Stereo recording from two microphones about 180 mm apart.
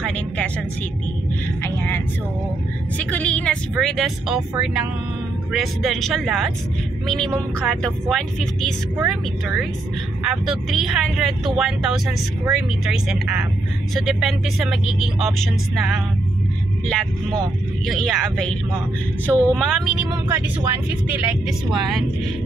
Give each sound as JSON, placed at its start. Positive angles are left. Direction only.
{"t": 3.0, "sound": "speech", "side_deg": 10}
{"t": 17.8, "sound": "speech", "side_deg": 0}